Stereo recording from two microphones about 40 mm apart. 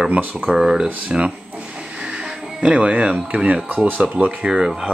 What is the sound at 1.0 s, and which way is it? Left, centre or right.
Speech, right.